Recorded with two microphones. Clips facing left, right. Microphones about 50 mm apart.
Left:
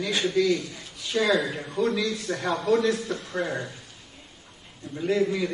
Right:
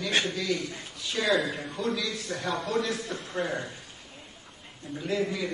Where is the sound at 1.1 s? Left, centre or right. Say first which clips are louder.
Left 3 dB; centre; by 2.7 s left.